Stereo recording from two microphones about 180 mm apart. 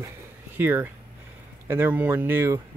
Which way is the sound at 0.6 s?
10° right (ahead or behind).